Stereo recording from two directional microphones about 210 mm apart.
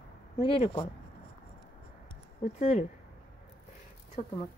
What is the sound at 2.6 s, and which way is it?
Speech, 35° left (ahead or behind).